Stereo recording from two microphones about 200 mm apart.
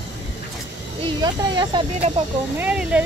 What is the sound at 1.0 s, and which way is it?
Speech, 20° right (ahead or behind).